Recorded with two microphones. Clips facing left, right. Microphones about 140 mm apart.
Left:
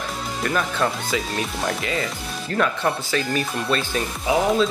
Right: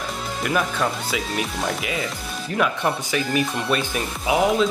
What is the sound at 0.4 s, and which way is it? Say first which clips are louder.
Speech: even; 5° right (ahead or behind).